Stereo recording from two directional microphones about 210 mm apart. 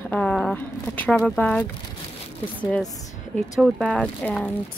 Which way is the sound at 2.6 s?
5° left (ahead or behind).